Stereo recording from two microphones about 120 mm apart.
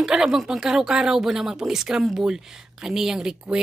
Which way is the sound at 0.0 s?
5° right (ahead or behind).